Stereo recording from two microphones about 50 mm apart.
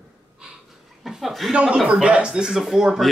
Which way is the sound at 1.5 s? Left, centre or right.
Right.